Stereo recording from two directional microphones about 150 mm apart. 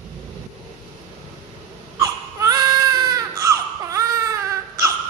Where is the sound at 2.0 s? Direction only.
25° right (ahead or behind).